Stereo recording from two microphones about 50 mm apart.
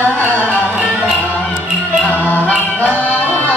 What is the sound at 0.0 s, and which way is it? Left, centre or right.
Music, left.